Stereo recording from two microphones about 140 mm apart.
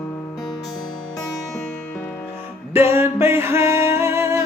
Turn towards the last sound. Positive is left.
turn(degrees=-20)  # may be behind; listen again after turning